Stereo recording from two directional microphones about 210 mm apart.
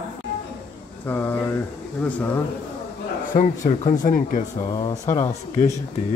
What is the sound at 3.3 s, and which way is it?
Speech, 35° left (ahead or behind).